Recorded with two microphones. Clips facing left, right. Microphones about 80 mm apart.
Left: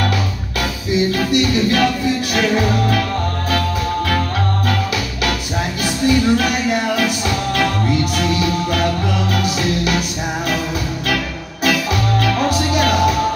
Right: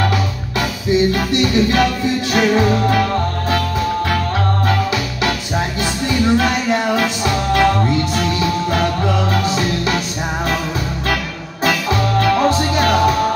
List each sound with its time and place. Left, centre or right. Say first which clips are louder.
0.6 s music: right 3 dB; right
6.0 s music: left 1 dB; right
11.6 s music: right 1 dB; right